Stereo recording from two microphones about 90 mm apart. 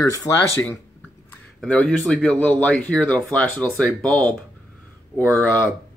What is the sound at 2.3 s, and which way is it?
Speech, 15° left (ahead or behind).